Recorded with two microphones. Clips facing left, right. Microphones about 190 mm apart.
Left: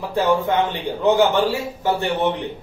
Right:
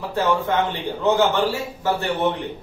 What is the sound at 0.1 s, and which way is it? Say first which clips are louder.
Speech: left 2 dB; 15° left (ahead or behind).